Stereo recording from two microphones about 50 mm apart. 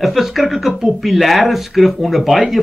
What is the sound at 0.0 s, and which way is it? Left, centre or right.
Speech, centre.